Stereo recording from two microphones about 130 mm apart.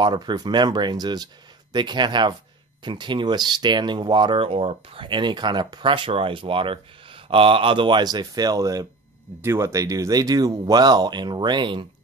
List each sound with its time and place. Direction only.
0.0 s speech: 35° right (ahead or behind)